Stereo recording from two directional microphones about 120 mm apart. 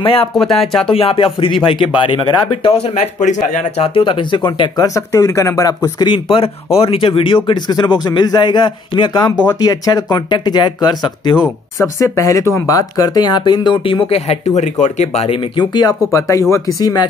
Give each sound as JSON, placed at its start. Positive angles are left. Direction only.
{"t": 0.0, "sound": "speech", "side_deg": 50}
{"t": 0.3, "sound": "speech", "side_deg": 0}
{"t": 0.8, "sound": "speech", "side_deg": 50}
{"t": 2.6, "sound": "speech", "side_deg": 65}
{"t": 15.2, "sound": "speech", "side_deg": 50}
{"t": 15.7, "sound": "speech", "side_deg": 35}